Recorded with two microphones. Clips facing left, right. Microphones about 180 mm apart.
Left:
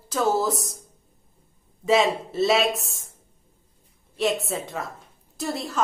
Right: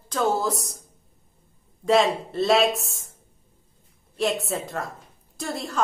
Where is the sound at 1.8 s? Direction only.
Centre (ahead or behind).